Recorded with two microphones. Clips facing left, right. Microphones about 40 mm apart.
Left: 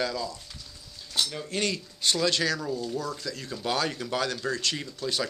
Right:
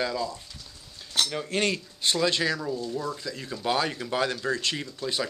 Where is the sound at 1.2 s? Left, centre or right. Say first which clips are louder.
Right 3 dB; right; by 4.1 s centre.